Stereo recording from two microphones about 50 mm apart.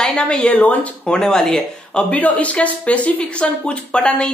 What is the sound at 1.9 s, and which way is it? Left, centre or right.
Speech, left.